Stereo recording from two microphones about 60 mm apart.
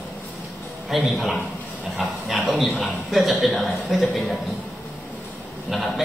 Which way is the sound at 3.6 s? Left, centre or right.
Right.